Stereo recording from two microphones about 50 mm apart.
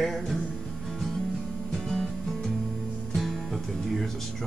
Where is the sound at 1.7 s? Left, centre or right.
Centre.